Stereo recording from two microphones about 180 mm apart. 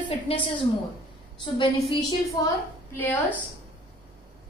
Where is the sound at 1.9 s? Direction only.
20° left (ahead or behind).